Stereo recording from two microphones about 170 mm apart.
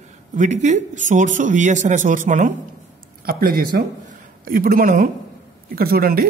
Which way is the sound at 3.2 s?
60° right (ahead or behind).